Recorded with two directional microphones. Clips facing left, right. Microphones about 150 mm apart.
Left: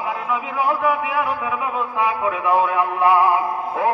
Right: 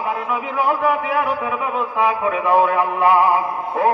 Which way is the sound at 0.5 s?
5° right (ahead or behind).